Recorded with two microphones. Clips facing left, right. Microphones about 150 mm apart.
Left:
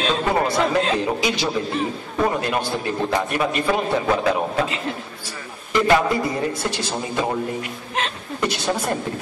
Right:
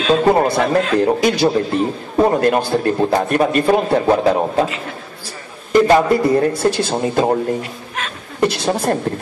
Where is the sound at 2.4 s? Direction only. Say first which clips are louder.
Right 8 dB; 50° right (ahead or behind).